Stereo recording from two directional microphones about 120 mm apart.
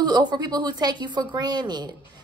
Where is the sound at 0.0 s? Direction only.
35° right (ahead or behind).